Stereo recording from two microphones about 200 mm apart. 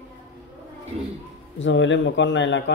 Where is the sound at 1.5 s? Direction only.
65° left (ahead or behind).